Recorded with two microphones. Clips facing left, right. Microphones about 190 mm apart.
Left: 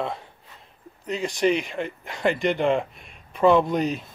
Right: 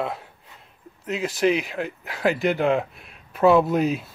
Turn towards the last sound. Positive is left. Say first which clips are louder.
# right 2 dB
turn(degrees=-5)  # may be behind; listen again after turning